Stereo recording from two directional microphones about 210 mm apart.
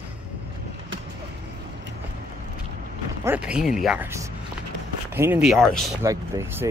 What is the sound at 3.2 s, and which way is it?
Speech, 5° right (ahead or behind).